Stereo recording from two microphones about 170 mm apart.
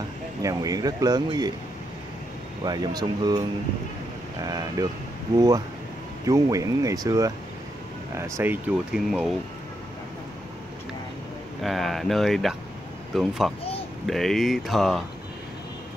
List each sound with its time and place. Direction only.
0.4 s speech: 20° right (ahead or behind)
2.6 s speech: 25° right (ahead or behind)
4.5 s speech: 20° right (ahead or behind)
6.2 s speech: 20° right (ahead or behind)
8.9 s speech: 5° right (ahead or behind)
11.6 s speech: centre (ahead or behind)